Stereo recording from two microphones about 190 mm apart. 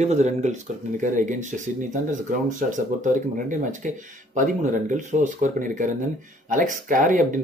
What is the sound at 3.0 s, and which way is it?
Speech, 40° right (ahead or behind).